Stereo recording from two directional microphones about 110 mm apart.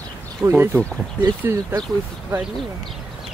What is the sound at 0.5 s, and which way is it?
Speech, 20° right (ahead or behind).